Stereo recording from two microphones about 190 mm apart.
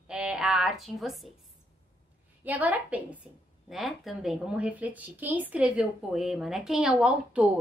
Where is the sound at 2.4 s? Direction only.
10° right (ahead or behind).